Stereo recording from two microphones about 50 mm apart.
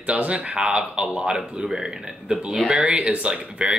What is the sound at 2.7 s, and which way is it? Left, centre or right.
Speech, right.